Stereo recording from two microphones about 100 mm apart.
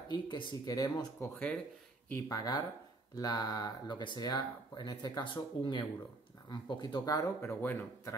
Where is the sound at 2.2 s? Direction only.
40° left (ahead or behind).